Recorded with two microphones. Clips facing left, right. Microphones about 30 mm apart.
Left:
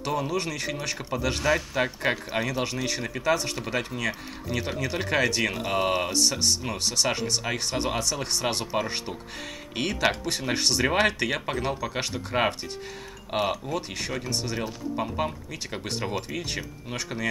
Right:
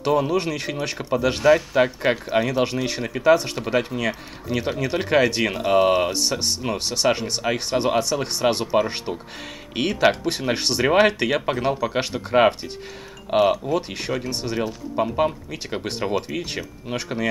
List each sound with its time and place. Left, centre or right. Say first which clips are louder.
0.0 s speech: right 7 dB; centre